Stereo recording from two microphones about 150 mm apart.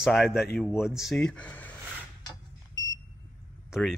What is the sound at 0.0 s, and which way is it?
Speech, centre (ahead or behind).